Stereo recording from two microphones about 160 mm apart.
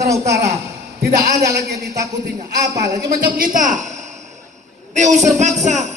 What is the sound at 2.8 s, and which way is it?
A woman's voice, 70° right (ahead or behind).